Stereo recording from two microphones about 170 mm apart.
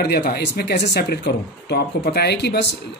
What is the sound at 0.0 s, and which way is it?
Speech, 70° left (ahead or behind).